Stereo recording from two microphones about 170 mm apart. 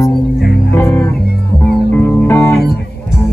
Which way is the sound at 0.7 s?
15° left (ahead or behind).